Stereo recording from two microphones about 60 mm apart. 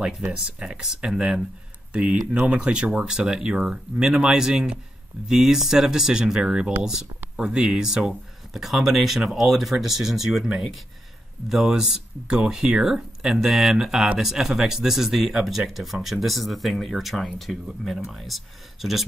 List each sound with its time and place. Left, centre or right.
0.3 s speech: centre